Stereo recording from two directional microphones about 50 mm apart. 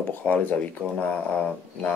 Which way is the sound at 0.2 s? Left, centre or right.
Left.